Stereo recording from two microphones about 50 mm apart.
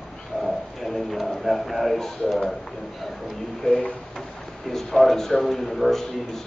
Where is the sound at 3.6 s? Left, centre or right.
Centre.